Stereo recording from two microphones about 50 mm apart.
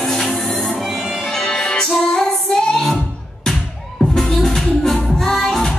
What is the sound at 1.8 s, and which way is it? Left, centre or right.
Female singing, centre.